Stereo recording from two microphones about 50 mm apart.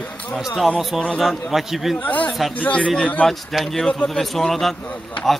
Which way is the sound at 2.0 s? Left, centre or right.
Left.